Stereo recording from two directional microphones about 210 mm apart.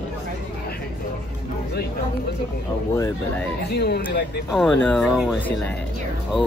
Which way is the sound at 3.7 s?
50° left (ahead or behind).